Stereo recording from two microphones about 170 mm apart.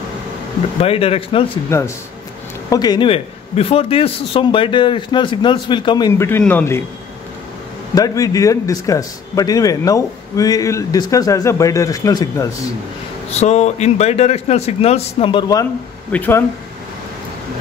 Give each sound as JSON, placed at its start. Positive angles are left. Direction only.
{"t": 0.7, "sound": "a man's voice", "side_deg": 35}
{"t": 1.7, "sound": "a man's voice", "side_deg": 15}
{"t": 6.2, "sound": "speech", "side_deg": 10}
{"t": 7.9, "sound": "a man's voice", "side_deg": 20}
{"t": 13.3, "sound": "a man's voice", "side_deg": 40}
{"t": 16.1, "sound": "speech", "side_deg": 10}